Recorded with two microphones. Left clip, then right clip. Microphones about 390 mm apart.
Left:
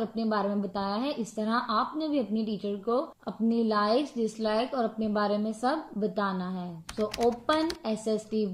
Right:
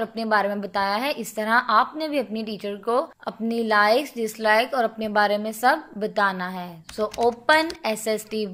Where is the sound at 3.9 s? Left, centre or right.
Centre.